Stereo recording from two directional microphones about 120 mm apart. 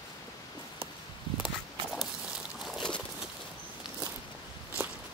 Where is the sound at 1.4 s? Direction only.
Centre (ahead or behind).